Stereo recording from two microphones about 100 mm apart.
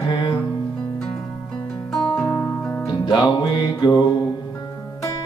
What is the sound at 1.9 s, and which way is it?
Music, 5° left (ahead or behind).